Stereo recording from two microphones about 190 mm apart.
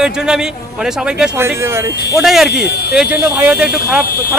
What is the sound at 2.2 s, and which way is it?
A man's voice, centre (ahead or behind).